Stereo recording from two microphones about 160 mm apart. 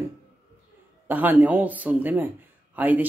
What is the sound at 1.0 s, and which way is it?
Speech, 10° right (ahead or behind).